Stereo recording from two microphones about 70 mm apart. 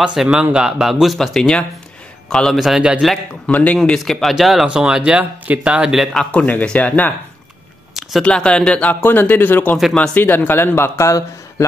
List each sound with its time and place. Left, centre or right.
0.0 s a man's voice: centre
3.5 s speech: centre
4.0 s a man's voice: centre
4.6 s speech: centre
6.3 s speech: left
8.2 s speech: centre
9.0 s speech: left
9.9 s speech: centre
10.2 s speech: left